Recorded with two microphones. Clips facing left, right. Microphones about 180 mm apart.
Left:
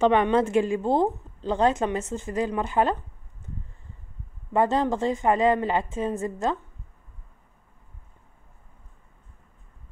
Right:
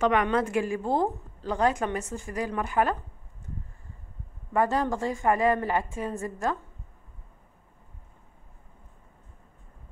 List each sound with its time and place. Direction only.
0.0 s a woman's voice: 25° left (ahead or behind)
4.5 s a woman's voice: 25° left (ahead or behind)